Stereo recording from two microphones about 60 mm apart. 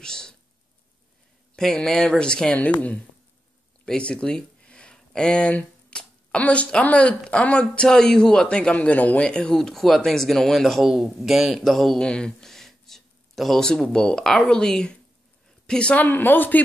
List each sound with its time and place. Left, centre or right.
0.0 s a sound: centre
1.6 s speech: centre; by 3.0 s left
3.8 s a sound: centre
5.9 s speech: left
9.6 s a woman's voice: centre
16.1 s speech: left